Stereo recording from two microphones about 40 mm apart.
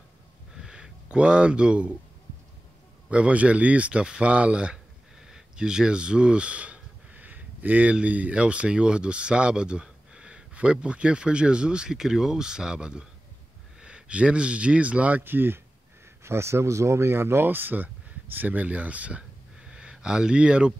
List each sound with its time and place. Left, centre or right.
0.6 s a sound: centre
1.1 s speech: right
3.1 s speech: right
5.3 s a sound: centre; by 7.9 s right
7.9 s speech: right
15.2 s speech: right
16.6 s speech: right
17.8 s speech: right
19.6 s a sound: right